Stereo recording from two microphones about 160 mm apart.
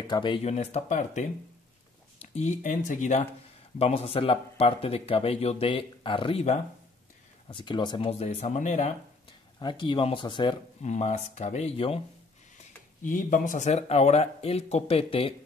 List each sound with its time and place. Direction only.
0.0 s speech: 30° left (ahead or behind)
0.5 s speech: 40° left (ahead or behind)
2.3 s speech: 50° left (ahead or behind); by 6.4 s 35° left (ahead or behind)
7.4 s speech: 30° left (ahead or behind); by 8.9 s 50° left (ahead or behind)
9.6 s speech: 30° left (ahead or behind)
10.8 s speech: 45° left (ahead or behind)
13.0 s speech: 55° left (ahead or behind); by 15.3 s 35° left (ahead or behind)